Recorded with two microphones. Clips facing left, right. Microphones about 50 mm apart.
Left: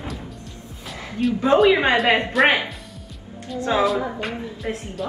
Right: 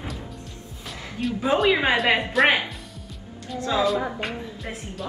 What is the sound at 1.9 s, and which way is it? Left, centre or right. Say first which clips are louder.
Speech: left 3 dB; centre.